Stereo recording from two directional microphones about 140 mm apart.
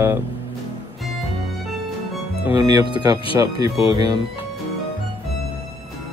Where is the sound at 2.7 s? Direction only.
40° left (ahead or behind).